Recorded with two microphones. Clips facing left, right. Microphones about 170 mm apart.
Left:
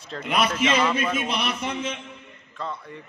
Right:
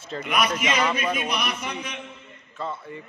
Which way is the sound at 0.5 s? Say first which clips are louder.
Left 2 dB; 10° right (ahead or behind).